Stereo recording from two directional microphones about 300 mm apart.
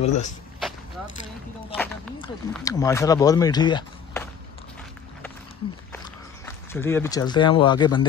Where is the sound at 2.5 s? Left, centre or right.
Centre.